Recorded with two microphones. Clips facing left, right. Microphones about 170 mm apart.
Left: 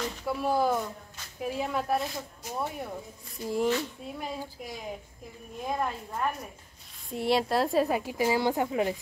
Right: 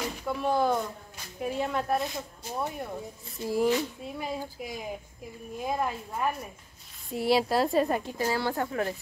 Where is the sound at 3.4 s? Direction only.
5° right (ahead or behind).